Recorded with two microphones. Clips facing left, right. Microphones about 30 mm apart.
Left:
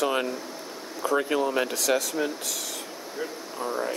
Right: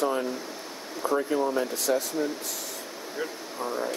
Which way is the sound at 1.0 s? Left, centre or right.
Left.